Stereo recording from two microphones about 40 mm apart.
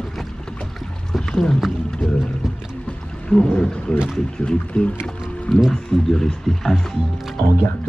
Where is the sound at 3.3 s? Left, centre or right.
Left.